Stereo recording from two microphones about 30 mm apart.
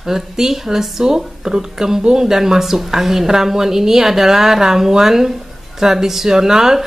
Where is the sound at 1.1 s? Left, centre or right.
Right.